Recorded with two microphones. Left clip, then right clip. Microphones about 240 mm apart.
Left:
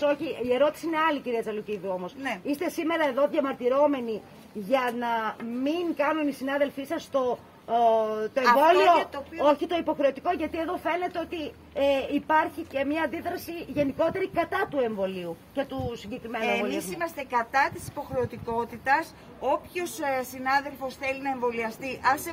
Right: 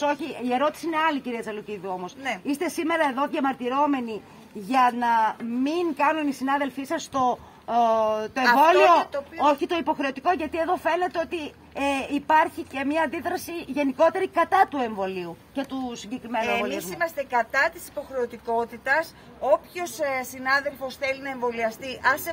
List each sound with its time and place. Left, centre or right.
0.0 s a woman's voice: right
17.0 s a woman's voice: centre